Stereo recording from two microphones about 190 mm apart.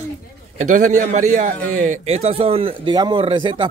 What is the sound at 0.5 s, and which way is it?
A man's voice, 40° right (ahead or behind).